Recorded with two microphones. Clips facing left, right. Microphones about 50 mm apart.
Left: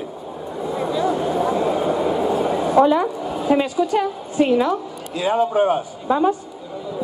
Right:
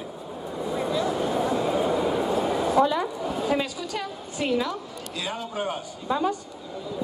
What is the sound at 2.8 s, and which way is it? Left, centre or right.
Speech, left.